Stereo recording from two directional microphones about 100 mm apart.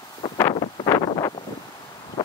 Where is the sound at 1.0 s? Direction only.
50° left (ahead or behind).